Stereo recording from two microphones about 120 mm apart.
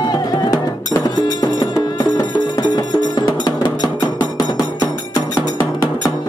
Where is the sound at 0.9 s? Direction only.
30° left (ahead or behind).